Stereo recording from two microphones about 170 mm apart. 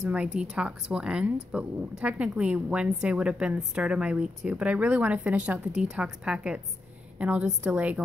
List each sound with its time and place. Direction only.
0.0 s a woman's voice: 10° right (ahead or behind)